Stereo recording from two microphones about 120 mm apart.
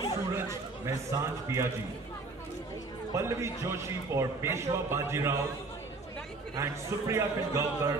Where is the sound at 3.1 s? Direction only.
20° right (ahead or behind).